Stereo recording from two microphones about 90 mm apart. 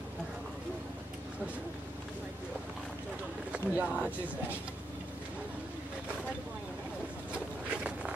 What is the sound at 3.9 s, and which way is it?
Speech, 10° right (ahead or behind).